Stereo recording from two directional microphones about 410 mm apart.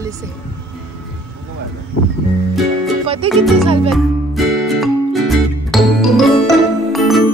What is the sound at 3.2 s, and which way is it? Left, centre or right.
Music, centre.